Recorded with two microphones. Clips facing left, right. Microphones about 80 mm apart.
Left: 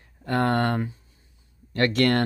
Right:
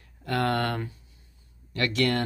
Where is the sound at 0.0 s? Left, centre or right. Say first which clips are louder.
Left 3 dB; left.